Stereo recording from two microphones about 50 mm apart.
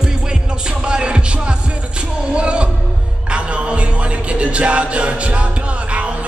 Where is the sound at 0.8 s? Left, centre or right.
Right.